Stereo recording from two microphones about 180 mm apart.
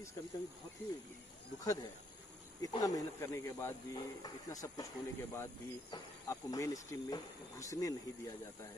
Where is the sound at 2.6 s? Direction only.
20° left (ahead or behind).